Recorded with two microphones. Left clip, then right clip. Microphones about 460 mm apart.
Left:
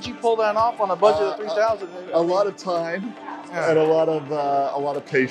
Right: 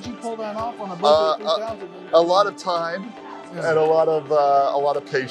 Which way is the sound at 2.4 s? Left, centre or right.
Right.